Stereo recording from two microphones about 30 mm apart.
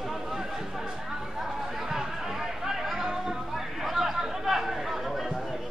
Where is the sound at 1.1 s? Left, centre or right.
Centre.